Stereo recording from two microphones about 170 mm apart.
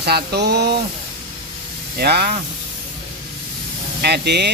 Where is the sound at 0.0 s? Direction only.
70° right (ahead or behind).